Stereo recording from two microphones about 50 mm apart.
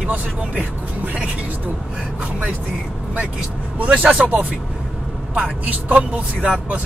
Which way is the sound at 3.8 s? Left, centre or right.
Right.